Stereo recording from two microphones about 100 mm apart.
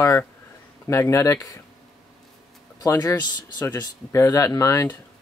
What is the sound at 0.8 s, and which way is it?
Speech, 30° left (ahead or behind).